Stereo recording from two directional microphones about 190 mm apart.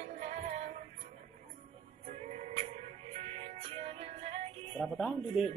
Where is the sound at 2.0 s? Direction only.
35° right (ahead or behind).